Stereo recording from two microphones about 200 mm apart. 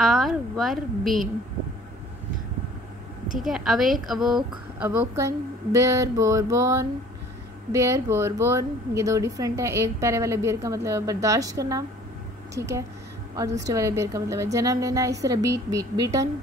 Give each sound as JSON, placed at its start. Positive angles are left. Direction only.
{"t": 0.0, "sound": "a woman's voice", "side_deg": 0}
{"t": 3.3, "sound": "a woman's voice", "side_deg": 0}
{"t": 4.7, "sound": "a woman's voice", "side_deg": -10}
{"t": 13.3, "sound": "a woman's voice", "side_deg": -15}